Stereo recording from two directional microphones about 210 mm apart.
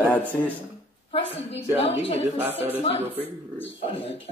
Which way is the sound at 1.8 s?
30° left (ahead or behind).